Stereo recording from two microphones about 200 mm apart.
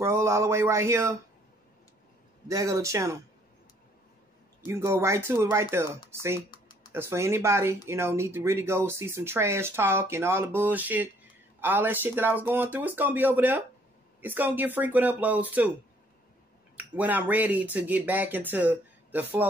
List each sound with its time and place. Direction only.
0.0 s speech: 15° right (ahead or behind)
2.4 s speech: 15° right (ahead or behind)
4.6 s speech: 10° right (ahead or behind)
6.5 s typing: 20° left (ahead or behind)
6.9 s speech: 10° right (ahead or behind)
16.7 s speech: 10° right (ahead or behind)